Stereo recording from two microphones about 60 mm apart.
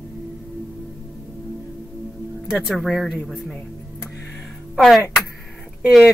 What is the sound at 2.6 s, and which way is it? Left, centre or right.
Speech, centre.